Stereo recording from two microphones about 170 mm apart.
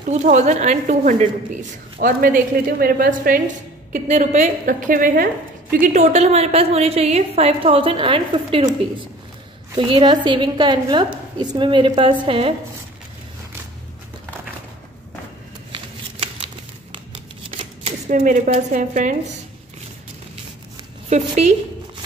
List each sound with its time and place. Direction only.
0.2 s speech: 45° right (ahead or behind)
2.0 s a woman's voice: 60° right (ahead or behind)
3.9 s a woman's voice: 45° right (ahead or behind)
15.7 s shuffling cards: 30° right (ahead or behind)
17.6 s speech: 40° right (ahead or behind)
21.1 s a woman's voice: 40° right (ahead or behind)